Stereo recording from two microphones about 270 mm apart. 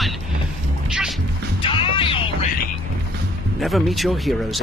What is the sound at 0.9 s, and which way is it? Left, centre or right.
Music, centre.